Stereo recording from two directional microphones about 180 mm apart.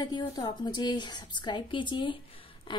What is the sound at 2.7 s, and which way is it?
Duck, 25° left (ahead or behind).